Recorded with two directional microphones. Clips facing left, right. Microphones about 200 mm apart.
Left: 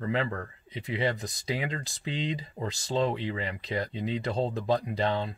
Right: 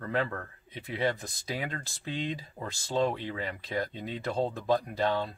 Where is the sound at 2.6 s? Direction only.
15° left (ahead or behind).